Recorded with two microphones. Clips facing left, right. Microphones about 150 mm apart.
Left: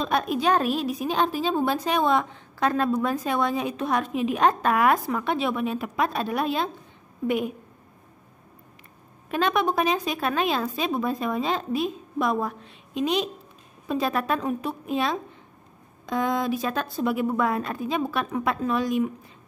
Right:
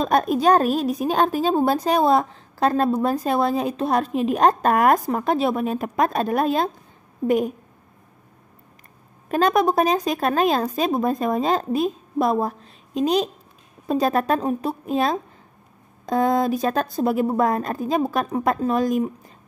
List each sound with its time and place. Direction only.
0.0 s a woman's voice: 45° right (ahead or behind)
9.3 s a woman's voice: 40° right (ahead or behind)